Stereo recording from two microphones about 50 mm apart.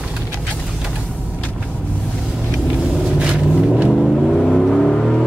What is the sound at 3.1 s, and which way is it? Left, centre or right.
Vehicle, centre.